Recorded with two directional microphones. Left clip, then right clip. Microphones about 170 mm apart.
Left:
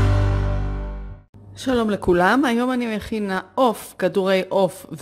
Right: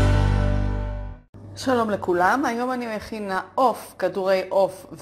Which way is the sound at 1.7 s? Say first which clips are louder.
Left 1 dB; 40° left (ahead or behind).